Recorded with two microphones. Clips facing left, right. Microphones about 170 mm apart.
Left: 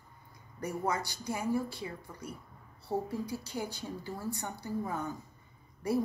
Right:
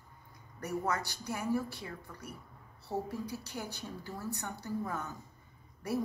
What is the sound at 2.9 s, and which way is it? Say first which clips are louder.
Speech: left 3 dB; 35° left (ahead or behind).